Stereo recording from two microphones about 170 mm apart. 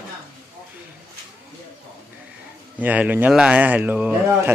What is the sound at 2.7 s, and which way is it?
A man's voice, 10° right (ahead or behind).